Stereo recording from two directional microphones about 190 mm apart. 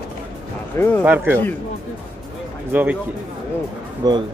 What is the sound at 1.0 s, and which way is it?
Speech, 10° right (ahead or behind).